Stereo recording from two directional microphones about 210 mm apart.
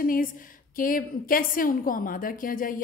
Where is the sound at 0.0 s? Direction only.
40° left (ahead or behind).